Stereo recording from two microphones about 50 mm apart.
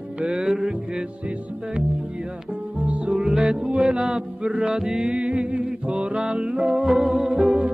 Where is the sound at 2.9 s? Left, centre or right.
Right.